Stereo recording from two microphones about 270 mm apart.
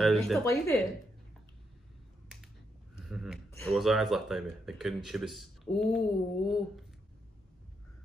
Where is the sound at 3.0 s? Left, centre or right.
Centre.